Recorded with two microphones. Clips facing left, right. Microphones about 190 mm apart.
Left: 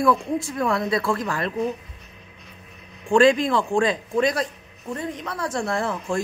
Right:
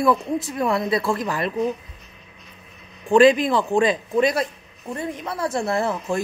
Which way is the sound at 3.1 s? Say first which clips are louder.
Right 2 dB; 5° right (ahead or behind).